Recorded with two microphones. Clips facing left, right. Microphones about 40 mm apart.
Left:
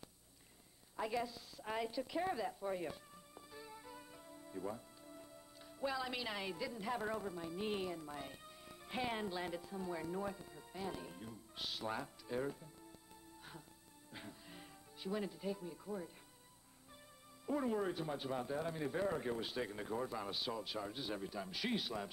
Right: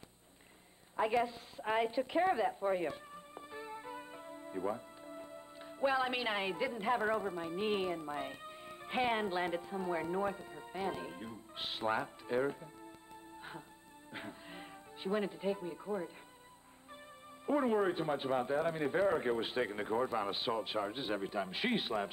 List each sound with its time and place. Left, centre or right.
0.9 s a woman's voice: right
13.4 s music: right
14.1 s speech: right
17.5 s speech: right